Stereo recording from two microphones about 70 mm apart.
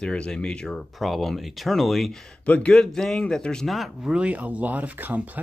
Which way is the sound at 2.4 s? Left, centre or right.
Centre.